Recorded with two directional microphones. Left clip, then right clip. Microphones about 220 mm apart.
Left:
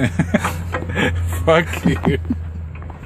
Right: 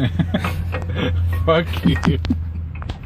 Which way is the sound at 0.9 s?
30° left (ahead or behind).